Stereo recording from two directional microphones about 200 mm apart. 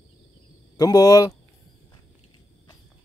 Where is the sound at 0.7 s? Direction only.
20° left (ahead or behind).